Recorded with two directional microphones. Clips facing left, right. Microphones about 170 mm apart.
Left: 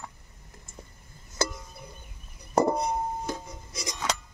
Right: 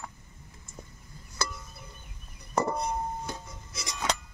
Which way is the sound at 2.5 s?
35° left (ahead or behind).